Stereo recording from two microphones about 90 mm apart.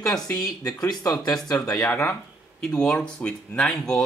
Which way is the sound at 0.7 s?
45° left (ahead or behind).